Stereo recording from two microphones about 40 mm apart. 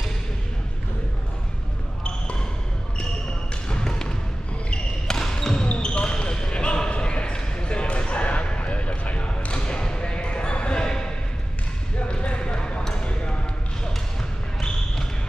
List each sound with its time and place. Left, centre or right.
2.0 s basketball bounce: left
3.6 s basketball bounce: centre
12.1 s basketball bounce: left